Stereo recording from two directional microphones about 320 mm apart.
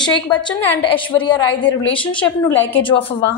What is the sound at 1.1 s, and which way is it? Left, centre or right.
A woman's voice, centre.